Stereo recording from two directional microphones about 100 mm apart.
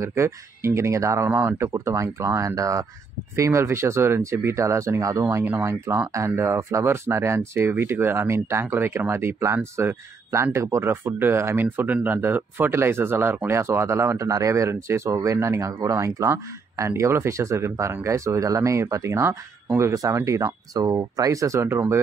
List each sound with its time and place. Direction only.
0.0 s speech: 30° right (ahead or behind)